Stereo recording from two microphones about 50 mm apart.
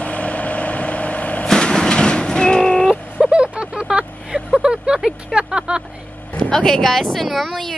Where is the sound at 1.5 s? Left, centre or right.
Centre.